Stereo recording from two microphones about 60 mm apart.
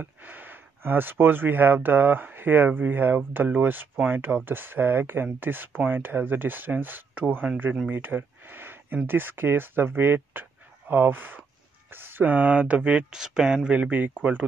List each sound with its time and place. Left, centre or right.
0.0 s speech: right
13.1 s speech: centre
13.7 s speech: right